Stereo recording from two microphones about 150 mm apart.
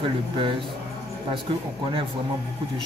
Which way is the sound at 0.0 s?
35° right (ahead or behind).